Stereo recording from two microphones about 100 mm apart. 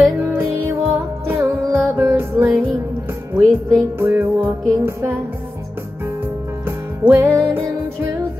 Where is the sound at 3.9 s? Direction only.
20° right (ahead or behind).